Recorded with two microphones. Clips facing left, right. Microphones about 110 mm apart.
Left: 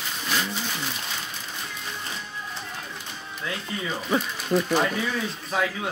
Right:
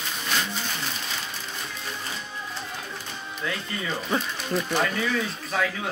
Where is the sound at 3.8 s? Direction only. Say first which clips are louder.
Left 2 dB; 10° left (ahead or behind).